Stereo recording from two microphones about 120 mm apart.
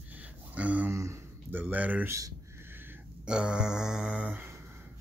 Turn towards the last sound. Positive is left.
turn(degrees=-10)  # may be behind; listen again after turning